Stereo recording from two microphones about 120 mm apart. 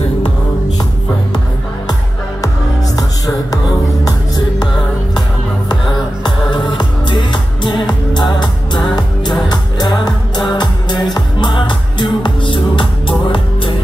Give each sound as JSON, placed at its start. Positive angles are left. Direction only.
{"t": 3.0, "sound": "music", "side_deg": 30}
{"t": 6.2, "sound": "music", "side_deg": 40}